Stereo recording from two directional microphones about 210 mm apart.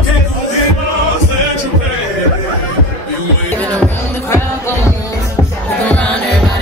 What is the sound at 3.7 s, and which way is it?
Music, 5° left (ahead or behind).